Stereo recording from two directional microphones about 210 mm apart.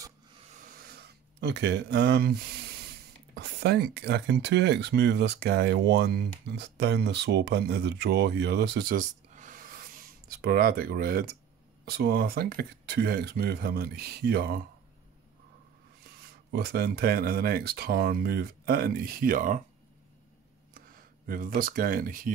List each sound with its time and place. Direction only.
0.5 s a sound: 40° right (ahead or behind)
3.3 s speech: 50° right (ahead or behind)
16.3 s speech: 50° right (ahead or behind)
21.3 s speech: 40° right (ahead or behind)